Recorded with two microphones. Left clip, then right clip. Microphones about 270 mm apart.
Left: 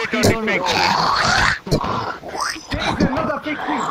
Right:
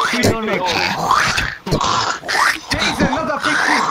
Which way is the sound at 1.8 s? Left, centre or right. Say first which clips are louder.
Right 6 dB; right.